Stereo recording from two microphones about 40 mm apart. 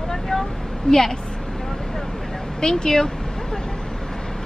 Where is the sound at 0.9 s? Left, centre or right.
Left.